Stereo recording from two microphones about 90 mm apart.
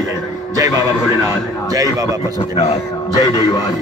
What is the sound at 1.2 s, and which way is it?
Speech, 40° right (ahead or behind).